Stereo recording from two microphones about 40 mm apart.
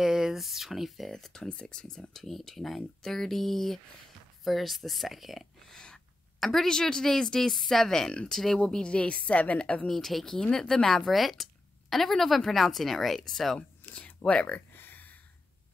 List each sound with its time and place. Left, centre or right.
0.0 s speech: centre
1.1 s speech: centre
1.6 s speech: left
2.1 s a woman's voice: centre
5.7 s a sound: centre
6.4 s speech: centre
8.6 s a woman's voice: left
9.8 s speech: centre
11.1 s a woman's voice: centre
13.9 s speech: left
14.8 s a sound: left